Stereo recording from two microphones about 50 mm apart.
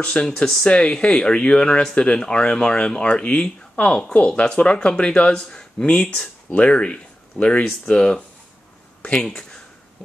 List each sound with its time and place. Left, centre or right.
0.0 s speech: centre